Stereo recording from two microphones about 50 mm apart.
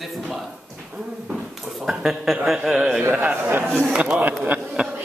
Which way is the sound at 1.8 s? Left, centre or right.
Centre.